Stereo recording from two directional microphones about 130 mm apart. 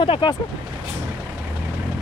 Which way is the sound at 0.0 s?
40° left (ahead or behind).